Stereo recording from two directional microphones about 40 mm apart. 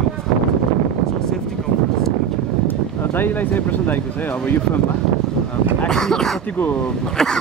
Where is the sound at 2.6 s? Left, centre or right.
Left.